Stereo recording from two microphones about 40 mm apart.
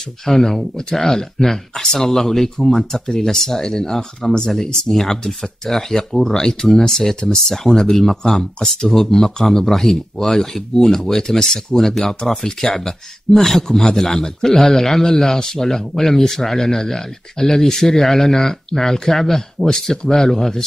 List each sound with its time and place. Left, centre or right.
0.2 s speech: centre